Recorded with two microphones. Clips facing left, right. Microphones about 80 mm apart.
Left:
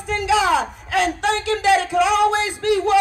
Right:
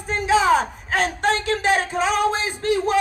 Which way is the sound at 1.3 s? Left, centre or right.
Left.